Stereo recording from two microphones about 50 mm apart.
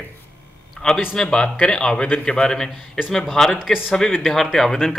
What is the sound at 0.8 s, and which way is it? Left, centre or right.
A man's voice, centre.